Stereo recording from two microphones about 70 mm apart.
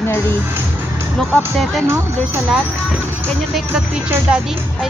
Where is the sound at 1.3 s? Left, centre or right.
Centre.